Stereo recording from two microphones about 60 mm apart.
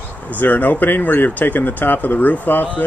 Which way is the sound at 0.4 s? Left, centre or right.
Left.